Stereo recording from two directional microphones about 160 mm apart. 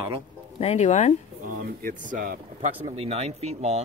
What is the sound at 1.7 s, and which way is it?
Speech, 65° right (ahead or behind).